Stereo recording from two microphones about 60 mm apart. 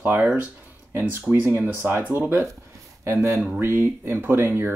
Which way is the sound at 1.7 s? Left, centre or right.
Right.